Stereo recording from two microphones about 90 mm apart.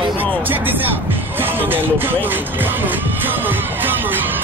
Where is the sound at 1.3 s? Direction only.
25° right (ahead or behind).